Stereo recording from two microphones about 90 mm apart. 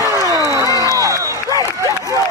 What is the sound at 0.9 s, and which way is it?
Music, 40° right (ahead or behind).